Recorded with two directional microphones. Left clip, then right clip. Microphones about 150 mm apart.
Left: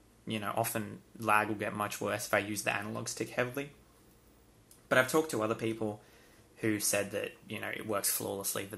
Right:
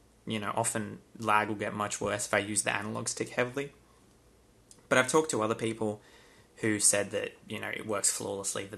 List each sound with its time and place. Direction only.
0.3 s speech: 20° right (ahead or behind)
4.8 s speech: 30° right (ahead or behind); by 8.7 s centre (ahead or behind)